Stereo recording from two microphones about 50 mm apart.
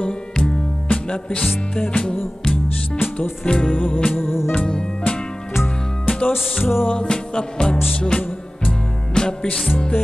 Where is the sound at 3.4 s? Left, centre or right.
Centre.